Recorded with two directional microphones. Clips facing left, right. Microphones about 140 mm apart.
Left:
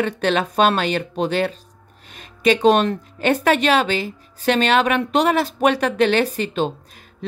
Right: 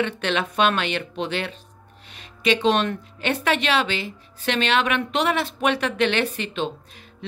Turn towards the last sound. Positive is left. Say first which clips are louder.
# left 5 dB
turn(degrees=45)  # may be behind; listen again after turning